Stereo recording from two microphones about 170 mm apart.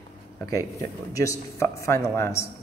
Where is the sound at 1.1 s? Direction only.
20° left (ahead or behind).